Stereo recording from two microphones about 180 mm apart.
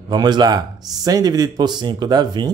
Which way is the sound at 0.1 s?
25° right (ahead or behind).